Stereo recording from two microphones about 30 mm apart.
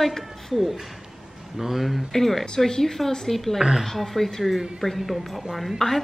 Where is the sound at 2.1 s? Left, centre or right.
Centre.